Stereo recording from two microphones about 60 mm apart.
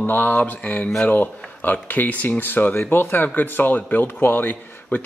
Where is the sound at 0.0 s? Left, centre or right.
Left.